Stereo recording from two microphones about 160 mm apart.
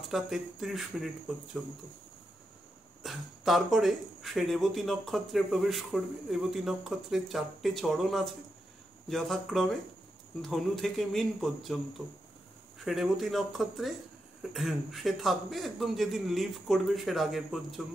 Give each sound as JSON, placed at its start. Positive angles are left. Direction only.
{"t": 0.1, "sound": "speech", "side_deg": 0}
{"t": 3.0, "sound": "speech", "side_deg": 0}